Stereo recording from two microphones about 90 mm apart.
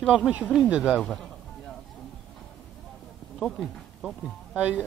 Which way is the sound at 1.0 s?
5° left (ahead or behind).